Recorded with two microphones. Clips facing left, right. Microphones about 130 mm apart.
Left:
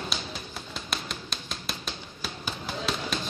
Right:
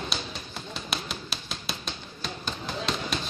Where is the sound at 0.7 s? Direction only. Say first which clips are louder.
Right 2 dB; centre (ahead or behind).